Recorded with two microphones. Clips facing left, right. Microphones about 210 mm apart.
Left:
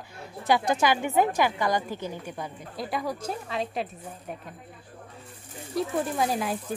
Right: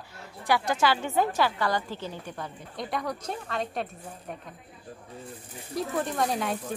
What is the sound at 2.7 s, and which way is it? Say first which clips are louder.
Speech: left 1 dB; centre (ahead or behind).